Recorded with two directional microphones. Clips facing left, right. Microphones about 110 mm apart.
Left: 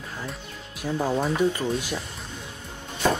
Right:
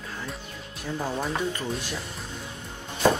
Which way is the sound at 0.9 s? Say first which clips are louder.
Left 5 dB; 15° left (ahead or behind).